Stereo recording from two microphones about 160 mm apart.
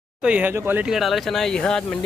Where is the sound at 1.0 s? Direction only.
Centre (ahead or behind).